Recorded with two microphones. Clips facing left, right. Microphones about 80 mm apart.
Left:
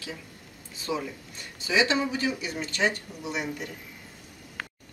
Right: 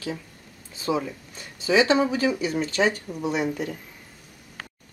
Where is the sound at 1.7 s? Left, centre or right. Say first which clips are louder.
Right 5 dB; right.